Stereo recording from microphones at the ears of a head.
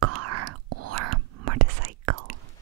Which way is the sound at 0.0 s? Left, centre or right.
Right.